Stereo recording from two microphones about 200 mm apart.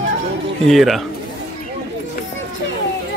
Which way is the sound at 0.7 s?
Centre (ahead or behind).